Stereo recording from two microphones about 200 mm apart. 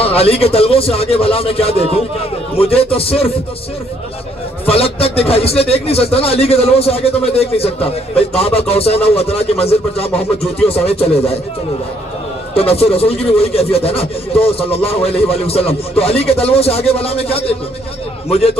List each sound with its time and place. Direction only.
0.0 s speech: 30° left (ahead or behind)
4.6 s speech: 30° left (ahead or behind)
12.5 s speech: 30° left (ahead or behind)